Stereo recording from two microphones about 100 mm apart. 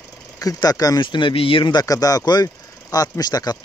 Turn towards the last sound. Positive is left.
turn(degrees=40)  # may be behind; listen again after turning